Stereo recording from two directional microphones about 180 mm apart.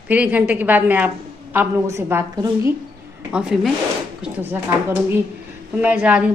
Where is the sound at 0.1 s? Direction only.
10° right (ahead or behind).